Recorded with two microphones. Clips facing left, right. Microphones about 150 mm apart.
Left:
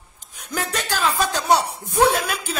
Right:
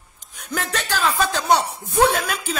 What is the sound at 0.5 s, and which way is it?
Speech, 10° left (ahead or behind).